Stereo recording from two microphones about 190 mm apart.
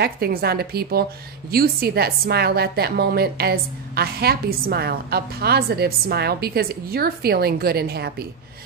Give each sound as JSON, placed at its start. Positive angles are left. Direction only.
{"t": 0.0, "sound": "a woman's voice", "side_deg": -55}